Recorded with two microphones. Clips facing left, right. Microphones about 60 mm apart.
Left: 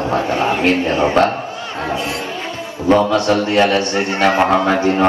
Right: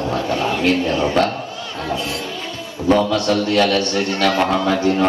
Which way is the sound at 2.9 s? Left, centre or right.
Left.